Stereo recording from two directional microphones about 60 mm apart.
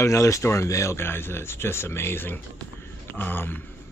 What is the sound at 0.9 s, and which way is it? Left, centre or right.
Speech, left.